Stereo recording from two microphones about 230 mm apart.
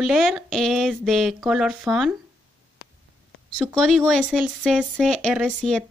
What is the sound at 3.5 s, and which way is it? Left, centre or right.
A woman's voice, centre.